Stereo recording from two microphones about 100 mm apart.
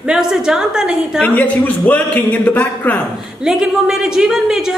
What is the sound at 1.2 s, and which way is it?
A man's voice, 15° left (ahead or behind).